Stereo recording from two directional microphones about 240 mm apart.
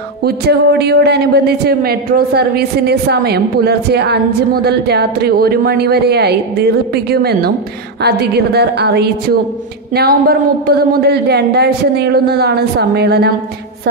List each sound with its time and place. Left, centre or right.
0.2 s a man's voice: right